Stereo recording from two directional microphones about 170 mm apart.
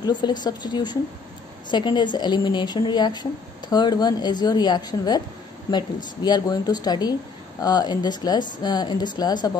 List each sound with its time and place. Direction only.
0.0 s a woman's voice: 25° left (ahead or behind)
6.2 s a woman's voice: 25° left (ahead or behind)